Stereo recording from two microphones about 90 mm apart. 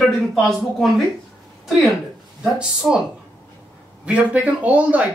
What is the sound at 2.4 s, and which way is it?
Speech, 10° right (ahead or behind).